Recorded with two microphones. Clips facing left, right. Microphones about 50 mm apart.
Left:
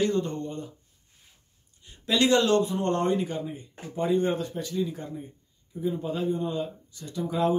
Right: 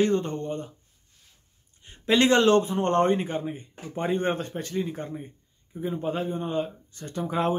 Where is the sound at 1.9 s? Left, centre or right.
Right.